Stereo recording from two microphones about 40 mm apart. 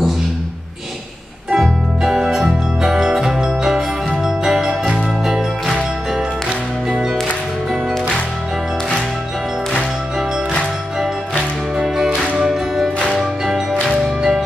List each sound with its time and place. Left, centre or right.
2.0 s music: centre
4.2 s jingle: centre
6.9 s music: centre
7.7 s music: centre
11.7 s music: centre
13.9 s music: centre